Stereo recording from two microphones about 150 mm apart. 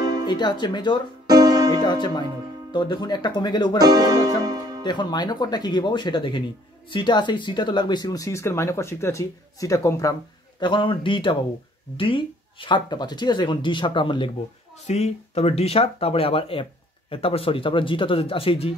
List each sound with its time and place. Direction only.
0.0 s music: 25° right (ahead or behind)
0.3 s speech: 30° left (ahead or behind)
1.2 s music: 25° right (ahead or behind)
1.9 s speech: 30° left (ahead or behind)
3.8 s music: 25° right (ahead or behind)
4.8 s speech: 30° left (ahead or behind)
10.6 s speech: 35° left (ahead or behind)
14.9 s speech: 45° left (ahead or behind)